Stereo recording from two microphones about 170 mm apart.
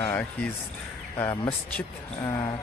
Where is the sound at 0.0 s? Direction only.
10° left (ahead or behind).